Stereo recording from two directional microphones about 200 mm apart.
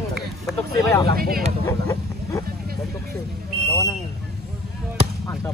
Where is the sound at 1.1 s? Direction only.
50° right (ahead or behind).